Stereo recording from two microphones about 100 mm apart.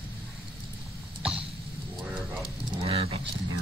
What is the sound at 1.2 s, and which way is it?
Cough, 10° right (ahead or behind).